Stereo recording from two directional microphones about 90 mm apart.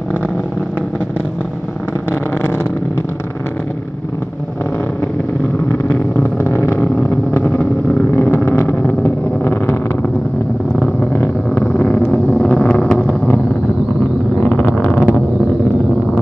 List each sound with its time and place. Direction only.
6.1 s vehicle: 25° left (ahead or behind)
10.8 s vehicle: 20° left (ahead or behind)
14.4 s vehicle: 15° left (ahead or behind)